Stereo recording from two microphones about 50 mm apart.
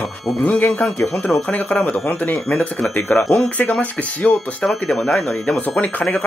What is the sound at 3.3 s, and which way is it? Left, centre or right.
Speech, left.